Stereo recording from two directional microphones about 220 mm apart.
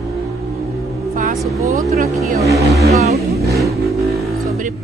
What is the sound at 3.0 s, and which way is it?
Speech, 30° right (ahead or behind).